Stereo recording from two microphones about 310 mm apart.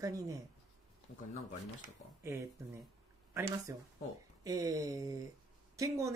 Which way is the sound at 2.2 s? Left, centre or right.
Centre.